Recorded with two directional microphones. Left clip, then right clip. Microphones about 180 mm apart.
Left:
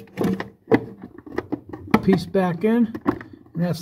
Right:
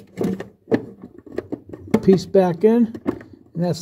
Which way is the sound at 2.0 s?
30° right (ahead or behind).